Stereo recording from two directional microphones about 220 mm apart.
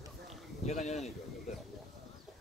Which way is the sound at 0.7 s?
30° left (ahead or behind).